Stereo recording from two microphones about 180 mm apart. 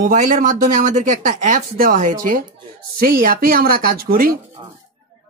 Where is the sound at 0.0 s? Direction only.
50° right (ahead or behind).